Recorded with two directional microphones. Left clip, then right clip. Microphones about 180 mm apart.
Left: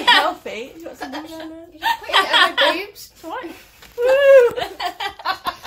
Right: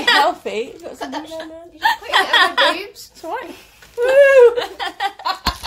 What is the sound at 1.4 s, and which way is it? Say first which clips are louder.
A woman's voice: right 9 dB; 60° right (ahead or behind).